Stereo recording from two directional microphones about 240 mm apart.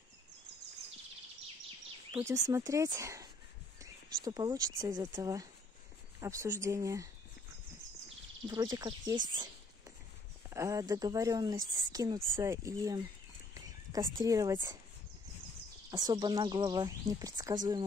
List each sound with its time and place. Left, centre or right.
2.1 s a woman's voice: centre
8.5 s a woman's voice: centre
10.5 s a woman's voice: centre
14.2 s a woman's voice: centre
15.9 s a woman's voice: centre